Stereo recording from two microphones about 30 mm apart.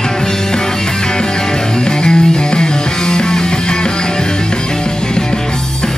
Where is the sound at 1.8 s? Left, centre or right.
Left.